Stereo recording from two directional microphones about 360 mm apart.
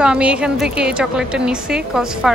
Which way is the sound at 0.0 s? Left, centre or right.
Centre.